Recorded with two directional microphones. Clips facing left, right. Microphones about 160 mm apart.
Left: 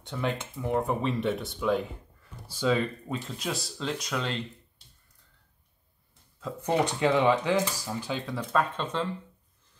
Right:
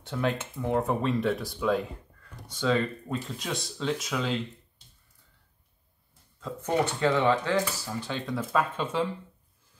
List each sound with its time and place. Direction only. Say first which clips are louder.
0.0 s speech: right 2 dB; 5° right (ahead or behind)
6.7 s speech: left 1 dB; 15° left (ahead or behind)
8.1 s speech: right 1 dB; centre (ahead or behind)